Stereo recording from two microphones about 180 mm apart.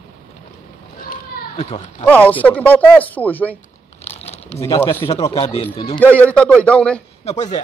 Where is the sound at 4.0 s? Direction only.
35° left (ahead or behind).